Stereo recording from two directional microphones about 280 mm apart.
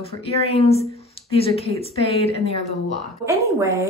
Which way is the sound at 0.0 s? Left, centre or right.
Left.